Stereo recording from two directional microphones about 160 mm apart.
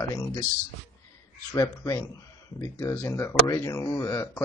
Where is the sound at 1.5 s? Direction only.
20° left (ahead or behind).